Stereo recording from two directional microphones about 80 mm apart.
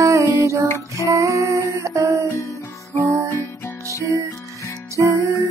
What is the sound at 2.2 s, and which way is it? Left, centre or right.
Music, left.